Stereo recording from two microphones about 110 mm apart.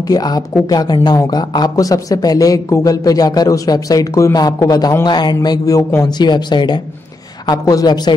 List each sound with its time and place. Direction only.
0.1 s a man's voice: 35° left (ahead or behind)